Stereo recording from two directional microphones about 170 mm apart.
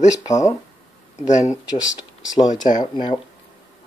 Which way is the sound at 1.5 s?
5° right (ahead or behind).